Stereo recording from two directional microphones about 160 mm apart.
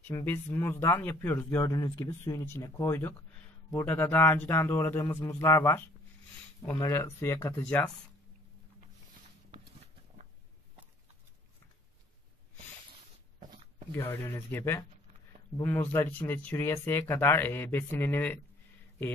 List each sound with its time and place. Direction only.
0.1 s speech: 15° left (ahead or behind)
1.7 s speech: 25° left (ahead or behind)
6.8 s speech: 20° left (ahead or behind)
13.9 s speech: 15° left (ahead or behind)